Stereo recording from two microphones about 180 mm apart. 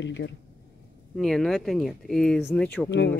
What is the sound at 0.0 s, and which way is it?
Speech, 85° left.